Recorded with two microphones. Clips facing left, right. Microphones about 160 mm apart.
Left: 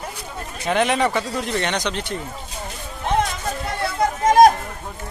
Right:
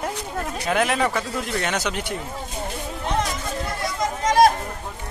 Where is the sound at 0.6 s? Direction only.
Centre (ahead or behind).